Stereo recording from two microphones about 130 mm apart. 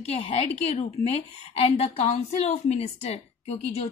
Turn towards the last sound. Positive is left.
turn(degrees=55)  # may be behind; listen again after turning